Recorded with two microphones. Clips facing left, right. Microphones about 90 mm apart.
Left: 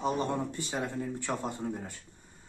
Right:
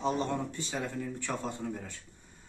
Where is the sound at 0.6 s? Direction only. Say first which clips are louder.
Left 2 dB; 20° left (ahead or behind).